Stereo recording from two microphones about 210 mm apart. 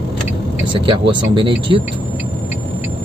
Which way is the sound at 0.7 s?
25° right (ahead or behind).